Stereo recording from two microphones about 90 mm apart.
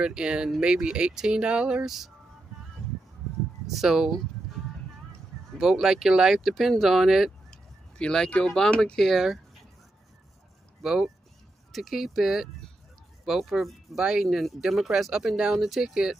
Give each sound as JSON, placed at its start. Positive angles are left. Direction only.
{"t": 0.0, "sound": "speech", "side_deg": -10}
{"t": 3.7, "sound": "speech", "side_deg": -5}
{"t": 5.6, "sound": "speech", "side_deg": -5}
{"t": 7.5, "sound": "speech", "side_deg": 5}
{"t": 10.8, "sound": "speech", "side_deg": -5}